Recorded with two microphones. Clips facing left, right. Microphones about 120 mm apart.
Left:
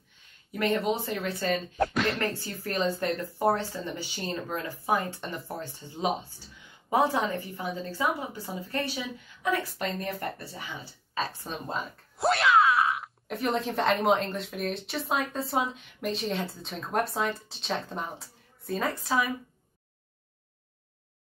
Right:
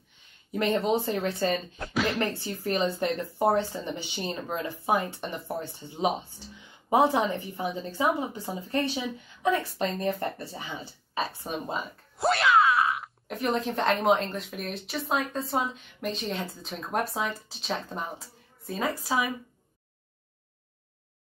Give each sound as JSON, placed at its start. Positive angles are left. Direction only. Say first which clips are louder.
{"t": 0.5, "sound": "speech", "louder": "right 2 dB", "side_deg": -25}
{"t": 11.1, "sound": "speech", "louder": "right 2 dB", "side_deg": -10}
{"t": 12.2, "sound": "speech", "louder": "even", "side_deg": 0}